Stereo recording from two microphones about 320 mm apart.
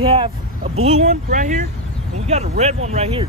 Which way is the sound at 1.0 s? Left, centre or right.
Right.